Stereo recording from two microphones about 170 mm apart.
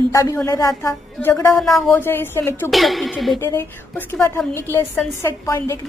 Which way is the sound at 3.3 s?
15° left (ahead or behind).